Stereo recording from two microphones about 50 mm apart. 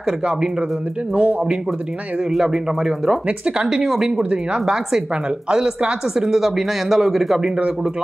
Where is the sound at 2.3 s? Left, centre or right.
Centre.